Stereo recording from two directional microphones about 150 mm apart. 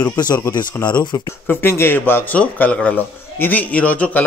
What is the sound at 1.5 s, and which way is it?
A man's voice, 15° left (ahead or behind).